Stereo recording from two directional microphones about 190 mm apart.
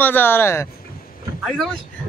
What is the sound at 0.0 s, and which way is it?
Speech, 10° left (ahead or behind).